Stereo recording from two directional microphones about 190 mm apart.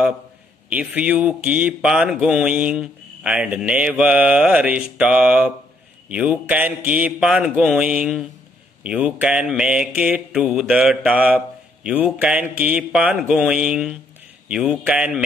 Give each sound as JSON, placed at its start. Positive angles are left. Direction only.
{"t": 0.7, "sound": "speech", "side_deg": -5}
{"t": 6.0, "sound": "mantra", "side_deg": -5}
{"t": 11.1, "sound": "speech", "side_deg": -5}
{"t": 12.5, "sound": "mantra", "side_deg": -5}